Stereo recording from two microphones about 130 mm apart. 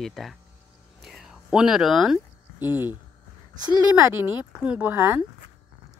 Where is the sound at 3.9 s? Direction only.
15° right (ahead or behind).